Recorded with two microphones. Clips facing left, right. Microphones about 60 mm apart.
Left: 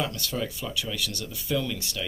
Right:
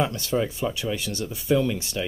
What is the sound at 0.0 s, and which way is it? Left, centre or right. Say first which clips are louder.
Speech: right 6 dB; right.